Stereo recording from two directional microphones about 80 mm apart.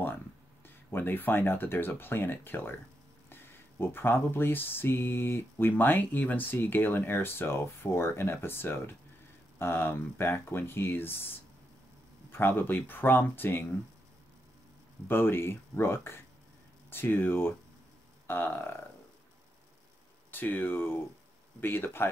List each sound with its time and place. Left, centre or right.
0.9 s speech: left
3.8 s speech: left
15.0 s speech: left
20.2 s speech: left